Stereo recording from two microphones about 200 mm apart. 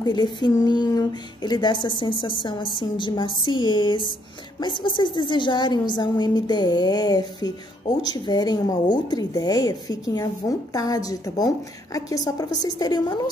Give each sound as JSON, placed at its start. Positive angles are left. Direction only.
{"t": 0.0, "sound": "speech", "side_deg": 20}